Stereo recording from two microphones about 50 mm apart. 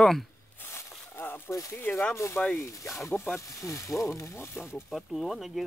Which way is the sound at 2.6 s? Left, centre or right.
Left.